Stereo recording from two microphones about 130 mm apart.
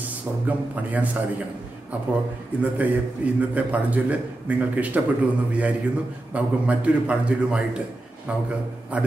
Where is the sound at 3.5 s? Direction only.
10° right (ahead or behind).